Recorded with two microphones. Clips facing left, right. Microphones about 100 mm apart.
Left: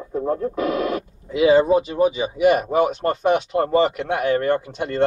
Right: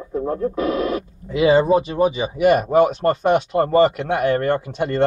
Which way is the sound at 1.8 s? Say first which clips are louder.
Even; 60° right (ahead or behind).